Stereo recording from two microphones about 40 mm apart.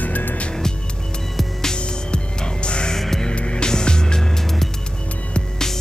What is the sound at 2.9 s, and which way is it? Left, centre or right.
Hum, centre.